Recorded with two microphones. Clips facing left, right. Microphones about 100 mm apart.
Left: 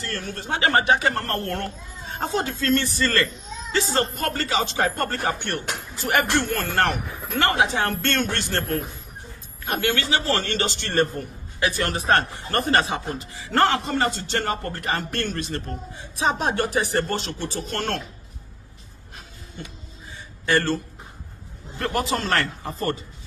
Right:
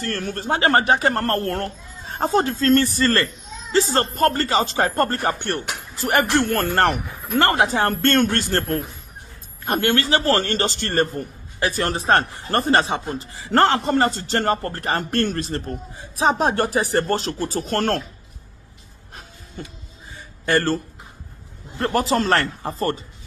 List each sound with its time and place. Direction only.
0.0 s a man's voice: 45° right (ahead or behind)
20.4 s a man's voice: 40° right (ahead or behind)